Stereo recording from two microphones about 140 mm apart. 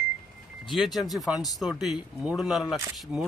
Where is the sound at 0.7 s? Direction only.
Centre (ahead or behind).